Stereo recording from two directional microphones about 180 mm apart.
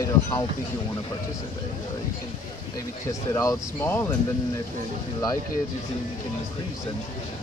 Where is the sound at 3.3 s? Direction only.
15° left (ahead or behind).